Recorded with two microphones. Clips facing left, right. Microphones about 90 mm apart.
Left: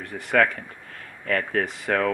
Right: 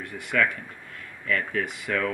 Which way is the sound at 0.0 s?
40° left (ahead or behind).